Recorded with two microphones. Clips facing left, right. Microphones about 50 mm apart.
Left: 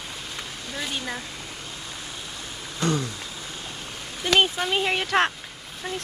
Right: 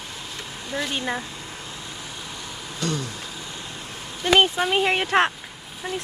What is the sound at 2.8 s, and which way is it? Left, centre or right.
Speech, left.